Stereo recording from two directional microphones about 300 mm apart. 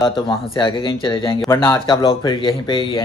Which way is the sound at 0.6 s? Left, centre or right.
Centre.